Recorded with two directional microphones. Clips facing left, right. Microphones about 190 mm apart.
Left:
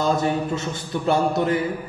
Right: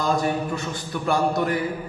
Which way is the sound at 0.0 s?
25° left (ahead or behind).